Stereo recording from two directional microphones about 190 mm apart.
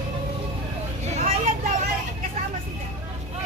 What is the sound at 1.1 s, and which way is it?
Vehicle, 40° right (ahead or behind).